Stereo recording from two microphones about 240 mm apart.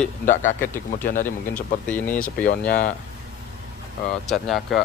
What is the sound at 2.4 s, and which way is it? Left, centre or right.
Speech, left.